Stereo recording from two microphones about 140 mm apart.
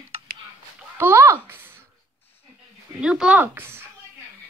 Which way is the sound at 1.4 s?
15° right (ahead or behind).